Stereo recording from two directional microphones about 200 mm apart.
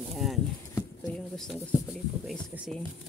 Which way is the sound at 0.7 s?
5° left (ahead or behind).